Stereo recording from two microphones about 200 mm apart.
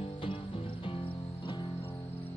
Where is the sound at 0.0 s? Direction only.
25° left (ahead or behind).